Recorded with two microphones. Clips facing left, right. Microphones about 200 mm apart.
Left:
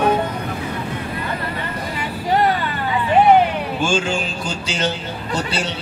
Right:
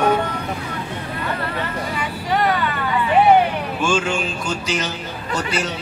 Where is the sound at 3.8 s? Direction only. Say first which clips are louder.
Even; 30° left (ahead or behind).